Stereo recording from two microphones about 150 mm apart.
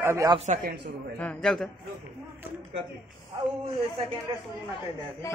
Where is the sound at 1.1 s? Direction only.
5° left (ahead or behind).